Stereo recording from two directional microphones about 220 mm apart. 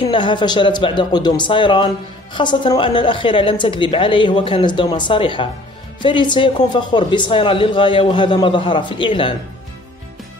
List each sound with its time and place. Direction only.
0.1 s speech: 20° left (ahead or behind)